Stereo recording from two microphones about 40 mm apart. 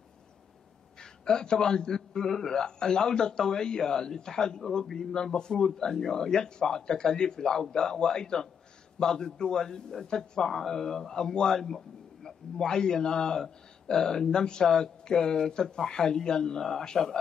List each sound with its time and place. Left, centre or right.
0.9 s speech: centre
5.5 s speech: centre
5.8 s speech: centre